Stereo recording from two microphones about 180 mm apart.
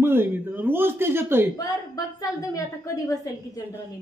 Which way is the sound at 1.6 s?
20° left (ahead or behind).